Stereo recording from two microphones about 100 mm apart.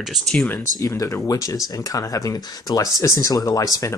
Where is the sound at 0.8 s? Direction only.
35° left (ahead or behind).